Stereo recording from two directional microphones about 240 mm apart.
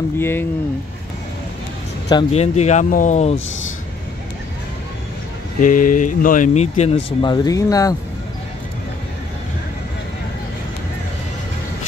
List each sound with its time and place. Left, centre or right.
0.2 s speech: centre
2.0 s speech: left
5.6 s speech: left; by 7.9 s centre